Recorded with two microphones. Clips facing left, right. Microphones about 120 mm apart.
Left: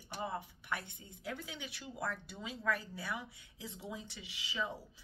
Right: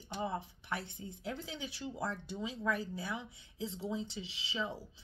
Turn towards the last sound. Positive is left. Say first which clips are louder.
# right 1 dB
turn(degrees=-25)  # may be behind; listen again after turning